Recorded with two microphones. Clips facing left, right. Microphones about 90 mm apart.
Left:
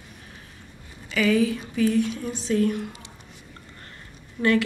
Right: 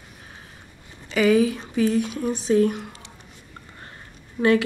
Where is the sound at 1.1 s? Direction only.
20° right (ahead or behind).